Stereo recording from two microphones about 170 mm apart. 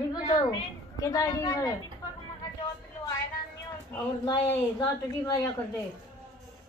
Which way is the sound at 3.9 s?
20° left (ahead or behind).